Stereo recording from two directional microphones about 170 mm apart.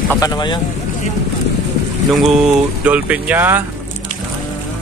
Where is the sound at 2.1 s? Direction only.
Centre (ahead or behind).